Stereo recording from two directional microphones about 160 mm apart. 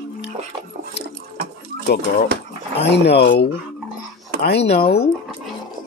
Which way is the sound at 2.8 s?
90° left.